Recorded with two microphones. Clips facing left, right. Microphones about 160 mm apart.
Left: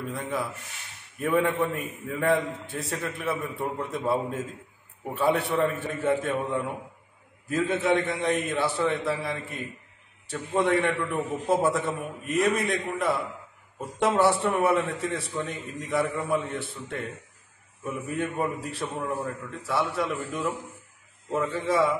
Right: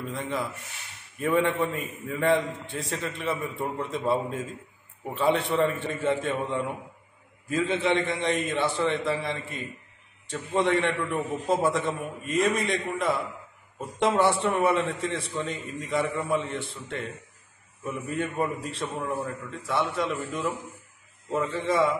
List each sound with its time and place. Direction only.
0.1 s a man's voice: 5° left (ahead or behind)